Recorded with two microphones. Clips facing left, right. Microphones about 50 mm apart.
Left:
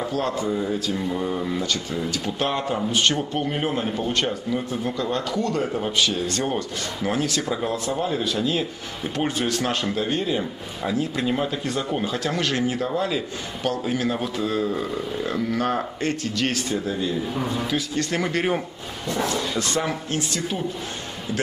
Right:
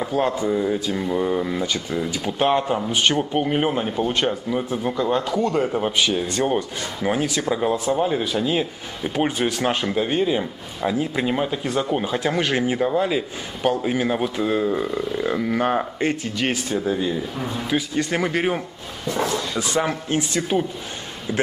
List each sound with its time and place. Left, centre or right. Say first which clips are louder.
0.0 s a man's voice: right 3 dB; centre
20.1 s speech: right 4 dB; right